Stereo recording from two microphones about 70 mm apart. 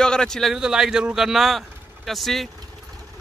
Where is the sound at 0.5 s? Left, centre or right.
Centre.